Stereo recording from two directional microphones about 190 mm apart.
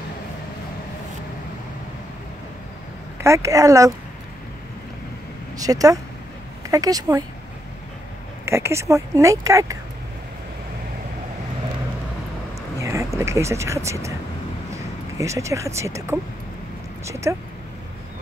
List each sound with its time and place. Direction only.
3.2 s speech: 15° right (ahead or behind)
5.6 s speech: 20° right (ahead or behind)
8.5 s speech: 15° right (ahead or behind)
12.7 s vehicle: 15° right (ahead or behind)
15.1 s speech: 15° right (ahead or behind)